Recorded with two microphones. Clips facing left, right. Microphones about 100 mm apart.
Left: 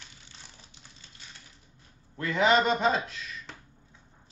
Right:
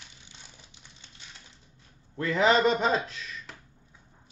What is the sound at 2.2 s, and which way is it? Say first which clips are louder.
Speech: right 1 dB; 35° right (ahead or behind).